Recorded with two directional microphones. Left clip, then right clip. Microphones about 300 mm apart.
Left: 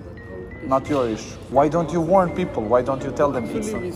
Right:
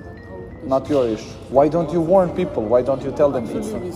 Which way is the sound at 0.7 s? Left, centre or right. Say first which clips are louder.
Right 2 dB; centre.